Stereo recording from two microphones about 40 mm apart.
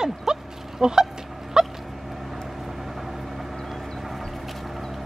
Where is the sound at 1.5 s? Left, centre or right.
Centre.